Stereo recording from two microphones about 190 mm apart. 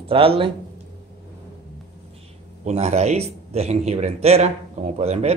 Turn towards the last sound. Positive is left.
turn(degrees=-35)  # may be behind; listen again after turning